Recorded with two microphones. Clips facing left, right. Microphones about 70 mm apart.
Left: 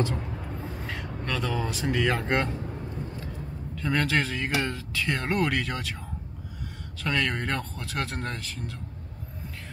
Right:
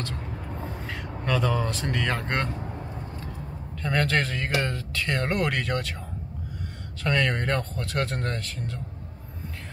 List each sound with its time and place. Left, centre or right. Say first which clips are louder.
0.0 s vehicle: left 6 dB; centre
0.3 s a sound: right 1 dB; centre
3.2 s speech: even; centre
7.0 s speech: right 2 dB; centre